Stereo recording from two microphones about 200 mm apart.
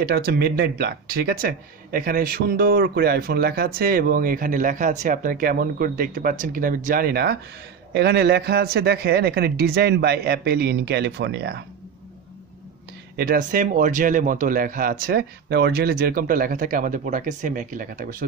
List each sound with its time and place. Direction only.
0.0 s speech: 50° right (ahead or behind)
13.1 s speech: 45° right (ahead or behind)